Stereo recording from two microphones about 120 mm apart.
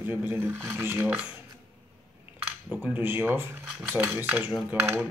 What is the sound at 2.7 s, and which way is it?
Speech, 15° right (ahead or behind).